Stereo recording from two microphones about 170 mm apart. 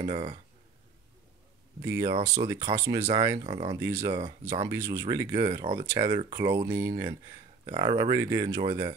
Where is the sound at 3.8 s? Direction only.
15° right (ahead or behind).